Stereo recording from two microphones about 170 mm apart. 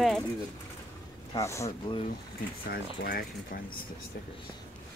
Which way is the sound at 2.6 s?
60° left (ahead or behind).